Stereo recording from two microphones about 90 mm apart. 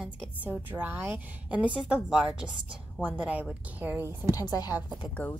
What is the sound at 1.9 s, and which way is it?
A woman's voice, 10° right (ahead or behind).